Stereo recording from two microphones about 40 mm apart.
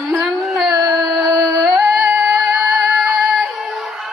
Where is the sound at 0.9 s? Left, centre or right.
Centre.